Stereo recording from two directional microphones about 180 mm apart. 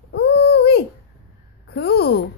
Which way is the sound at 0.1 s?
65° left (ahead or behind).